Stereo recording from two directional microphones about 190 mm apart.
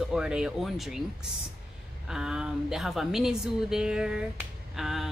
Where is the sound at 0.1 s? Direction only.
5° right (ahead or behind).